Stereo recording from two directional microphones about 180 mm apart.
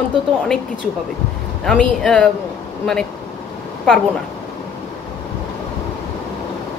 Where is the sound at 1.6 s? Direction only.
5° left (ahead or behind).